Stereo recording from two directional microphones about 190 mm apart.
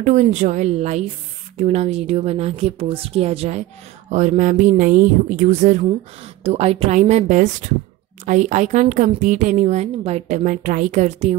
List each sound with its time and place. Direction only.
0.0 s a woman's voice: 40° right (ahead or behind)